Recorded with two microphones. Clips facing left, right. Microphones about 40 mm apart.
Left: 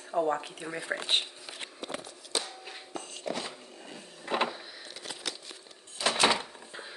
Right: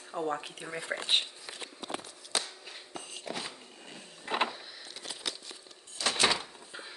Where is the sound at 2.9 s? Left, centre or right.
Centre.